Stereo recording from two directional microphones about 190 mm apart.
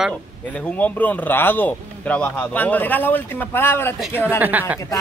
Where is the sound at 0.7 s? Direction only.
5° left (ahead or behind).